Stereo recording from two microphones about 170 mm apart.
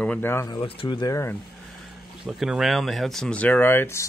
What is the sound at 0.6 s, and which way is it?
Speech, 30° left (ahead or behind).